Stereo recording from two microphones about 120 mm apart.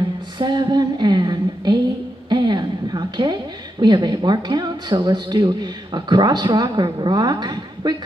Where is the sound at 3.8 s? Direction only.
35° right (ahead or behind).